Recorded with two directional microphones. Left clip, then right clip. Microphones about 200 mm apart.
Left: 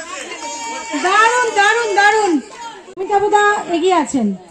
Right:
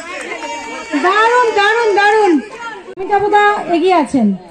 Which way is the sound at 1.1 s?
5° left (ahead or behind).